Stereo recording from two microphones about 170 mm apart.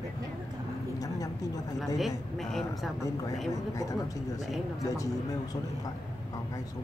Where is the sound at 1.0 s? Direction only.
20° left (ahead or behind).